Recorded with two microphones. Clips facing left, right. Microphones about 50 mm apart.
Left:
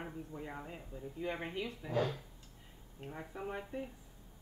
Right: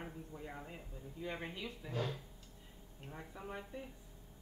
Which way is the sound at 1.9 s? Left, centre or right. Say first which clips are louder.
Left 6 dB; left.